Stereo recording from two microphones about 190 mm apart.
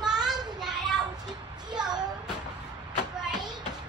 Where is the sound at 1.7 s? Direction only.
20° right (ahead or behind).